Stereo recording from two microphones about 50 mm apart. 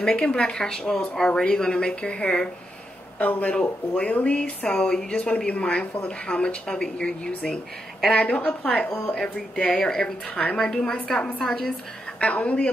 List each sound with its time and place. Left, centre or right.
0.0 s speech: centre
3.2 s speech: left
4.6 s speech: centre
9.1 s speech: centre
12.2 s speech: left